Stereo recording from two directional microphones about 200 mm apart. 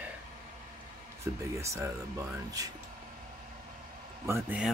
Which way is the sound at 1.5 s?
15° right (ahead or behind).